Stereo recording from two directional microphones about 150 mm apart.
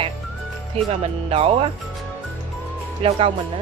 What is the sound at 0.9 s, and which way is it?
Speech, 40° right (ahead or behind).